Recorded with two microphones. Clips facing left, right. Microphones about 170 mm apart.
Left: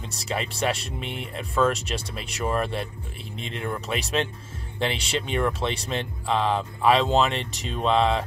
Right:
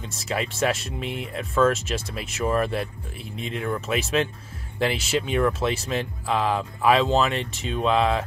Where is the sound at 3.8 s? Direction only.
Centre (ahead or behind).